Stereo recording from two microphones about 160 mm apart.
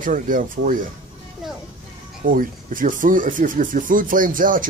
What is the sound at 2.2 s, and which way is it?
Speech, 60° right (ahead or behind).